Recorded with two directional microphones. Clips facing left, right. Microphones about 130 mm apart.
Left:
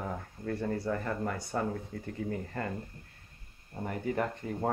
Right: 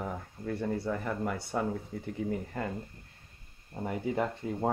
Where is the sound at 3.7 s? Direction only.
10° right (ahead or behind).